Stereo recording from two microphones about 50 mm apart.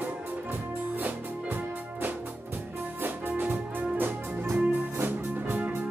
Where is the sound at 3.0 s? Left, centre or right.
Right.